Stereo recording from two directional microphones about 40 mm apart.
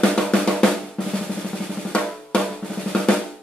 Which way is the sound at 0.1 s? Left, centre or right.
Centre.